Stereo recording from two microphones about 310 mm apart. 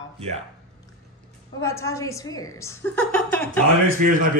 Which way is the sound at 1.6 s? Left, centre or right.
Centre.